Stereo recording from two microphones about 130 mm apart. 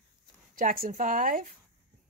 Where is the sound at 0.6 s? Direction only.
90° right.